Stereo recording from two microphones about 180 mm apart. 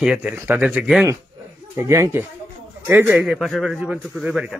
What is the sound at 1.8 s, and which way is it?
A man's voice, 15° right (ahead or behind).